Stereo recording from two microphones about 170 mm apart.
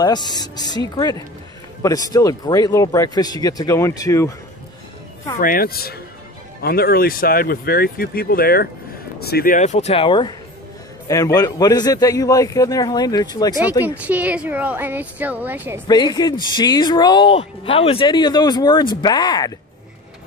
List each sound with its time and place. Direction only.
0.0 s speech: 25° left (ahead or behind)
5.4 s speech: 60° left (ahead or behind); by 13.6 s 25° left (ahead or behind)
13.8 s a woman's voice: 10° right (ahead or behind)
15.9 s speech: 25° left (ahead or behind)